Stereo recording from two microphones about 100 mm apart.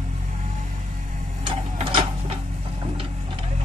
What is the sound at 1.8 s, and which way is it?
Printer, 90° right.